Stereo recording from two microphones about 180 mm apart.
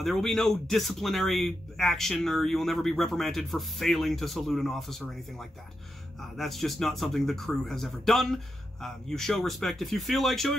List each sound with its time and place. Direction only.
0.0 s speech: centre (ahead or behind)